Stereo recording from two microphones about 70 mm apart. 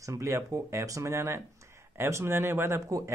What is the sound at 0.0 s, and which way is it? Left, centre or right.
A man's voice, right.